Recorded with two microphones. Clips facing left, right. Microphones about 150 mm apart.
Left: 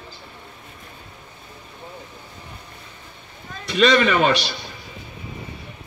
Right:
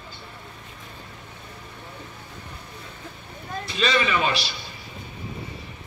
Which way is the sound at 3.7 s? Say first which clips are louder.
Left 7 dB; 65° left (ahead or behind).